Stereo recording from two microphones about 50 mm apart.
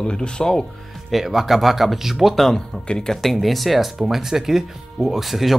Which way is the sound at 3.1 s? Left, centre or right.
Centre.